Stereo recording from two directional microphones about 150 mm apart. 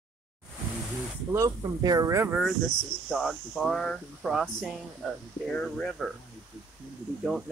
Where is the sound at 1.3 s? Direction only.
25° right (ahead or behind).